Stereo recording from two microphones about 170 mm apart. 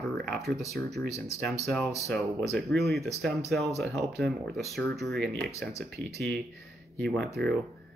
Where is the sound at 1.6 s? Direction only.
Centre (ahead or behind).